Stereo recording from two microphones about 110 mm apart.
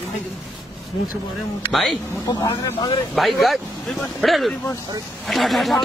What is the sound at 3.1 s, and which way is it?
Speech, centre (ahead or behind).